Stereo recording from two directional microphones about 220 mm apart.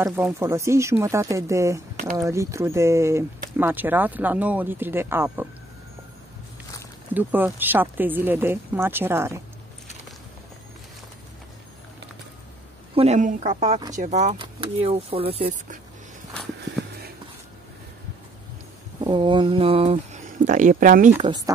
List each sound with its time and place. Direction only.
0.0 s speech: 10° right (ahead or behind)
7.2 s speech: 10° right (ahead or behind)
12.9 s speech: 30° right (ahead or behind)
18.9 s speech: 20° right (ahead or behind); by 21.1 s 35° right (ahead or behind)
21.2 s speech: 20° right (ahead or behind)